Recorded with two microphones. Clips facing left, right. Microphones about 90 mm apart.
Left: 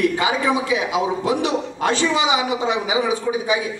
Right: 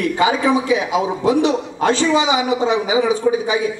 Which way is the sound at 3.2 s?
30° right (ahead or behind).